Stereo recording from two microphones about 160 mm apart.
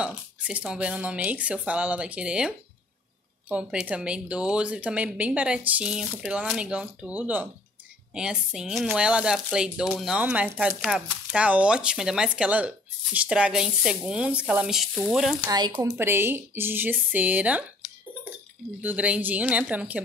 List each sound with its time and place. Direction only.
0.0 s speech: 5° right (ahead or behind)
15.4 s speech: 25° right (ahead or behind); by 17.6 s 10° right (ahead or behind)
18.8 s speech: 10° right (ahead or behind)